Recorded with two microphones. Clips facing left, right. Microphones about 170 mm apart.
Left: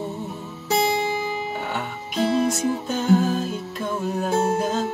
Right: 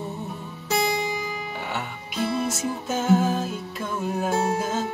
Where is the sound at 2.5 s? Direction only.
5° right (ahead or behind).